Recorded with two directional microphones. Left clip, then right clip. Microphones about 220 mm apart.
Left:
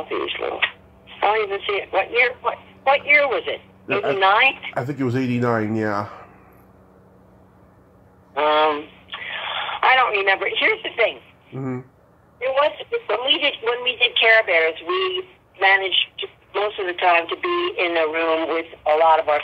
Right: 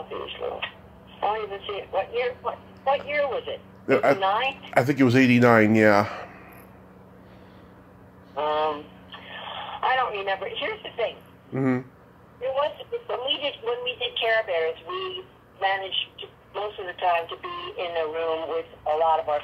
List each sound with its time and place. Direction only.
0.1 s a woman's voice: 20° left (ahead or behind)
4.7 s a man's voice: 15° right (ahead or behind)
8.4 s telephone: 20° left (ahead or behind)
11.5 s a man's voice: 10° right (ahead or behind)
12.4 s a woman's voice: 20° left (ahead or behind)